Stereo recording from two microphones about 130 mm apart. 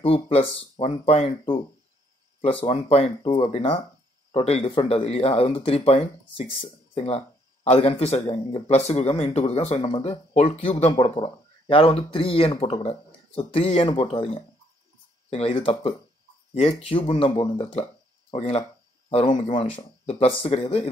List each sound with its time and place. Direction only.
0.0 s speech: 45° left (ahead or behind)